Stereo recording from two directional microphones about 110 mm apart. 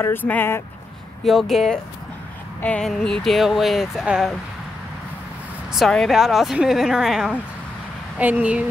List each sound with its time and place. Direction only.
0.0 s speech: 20° left (ahead or behind)
1.2 s speech: centre (ahead or behind)
5.7 s speech: centre (ahead or behind)
8.2 s speech: 15° right (ahead or behind)